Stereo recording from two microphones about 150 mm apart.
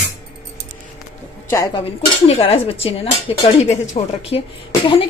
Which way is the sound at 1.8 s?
40° left (ahead or behind).